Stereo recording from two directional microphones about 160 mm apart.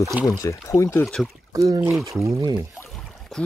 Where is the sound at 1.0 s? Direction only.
Centre (ahead or behind).